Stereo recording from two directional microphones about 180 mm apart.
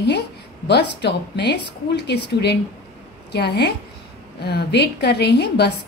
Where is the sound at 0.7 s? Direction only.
70° left (ahead or behind).